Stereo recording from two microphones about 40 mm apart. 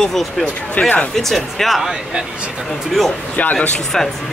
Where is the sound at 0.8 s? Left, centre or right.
Left.